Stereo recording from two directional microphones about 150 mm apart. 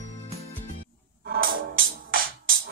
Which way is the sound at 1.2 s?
80° right.